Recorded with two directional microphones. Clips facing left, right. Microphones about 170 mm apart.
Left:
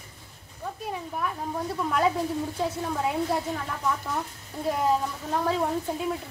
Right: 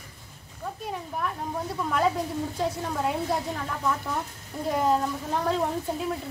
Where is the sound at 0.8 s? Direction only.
Centre (ahead or behind).